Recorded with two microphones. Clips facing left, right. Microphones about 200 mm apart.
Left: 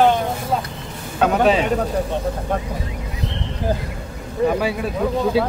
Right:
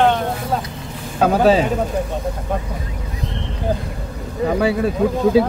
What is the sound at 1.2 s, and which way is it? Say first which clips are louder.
Speech: right 2 dB; 35° right (ahead or behind).